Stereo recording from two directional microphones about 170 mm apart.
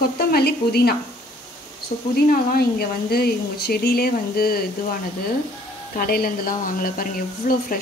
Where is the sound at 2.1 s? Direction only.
65° left (ahead or behind).